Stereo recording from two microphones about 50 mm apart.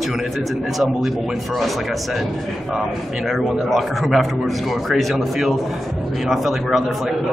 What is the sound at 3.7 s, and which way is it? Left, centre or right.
A man's voice, centre.